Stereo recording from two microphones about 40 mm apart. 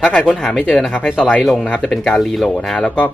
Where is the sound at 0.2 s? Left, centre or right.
Left.